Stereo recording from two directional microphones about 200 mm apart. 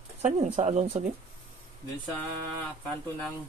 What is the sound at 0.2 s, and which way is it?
Speech, 35° right (ahead or behind).